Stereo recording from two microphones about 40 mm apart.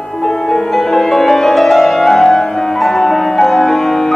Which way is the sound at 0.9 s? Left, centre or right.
Centre.